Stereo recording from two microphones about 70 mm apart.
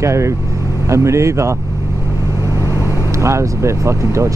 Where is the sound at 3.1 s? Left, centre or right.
Right.